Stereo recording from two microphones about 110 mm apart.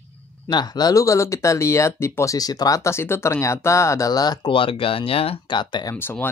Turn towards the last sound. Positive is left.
turn(degrees=20)  # may be behind; listen again after turning